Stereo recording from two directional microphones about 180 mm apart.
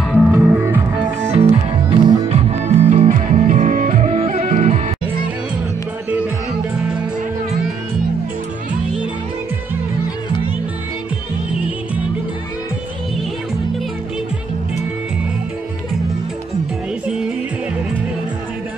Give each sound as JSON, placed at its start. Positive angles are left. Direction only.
{"t": 0.1, "sound": "music", "side_deg": -5}
{"t": 1.2, "sound": "music", "side_deg": -35}
{"t": 17.0, "sound": "music", "side_deg": -5}